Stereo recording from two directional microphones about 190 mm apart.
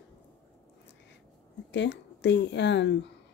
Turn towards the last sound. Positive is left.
turn(degrees=65)  # may be behind; listen again after turning